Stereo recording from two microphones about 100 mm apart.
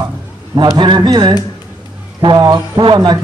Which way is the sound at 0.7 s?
45° right (ahead or behind).